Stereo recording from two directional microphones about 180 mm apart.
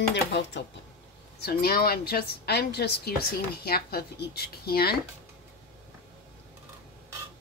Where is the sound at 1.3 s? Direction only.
60° left (ahead or behind).